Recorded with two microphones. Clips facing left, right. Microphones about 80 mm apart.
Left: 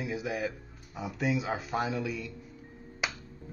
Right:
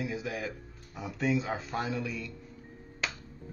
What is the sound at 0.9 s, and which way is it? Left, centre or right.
Speech, centre.